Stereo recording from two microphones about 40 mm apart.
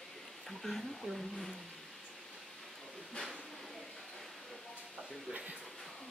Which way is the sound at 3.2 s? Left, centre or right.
Centre.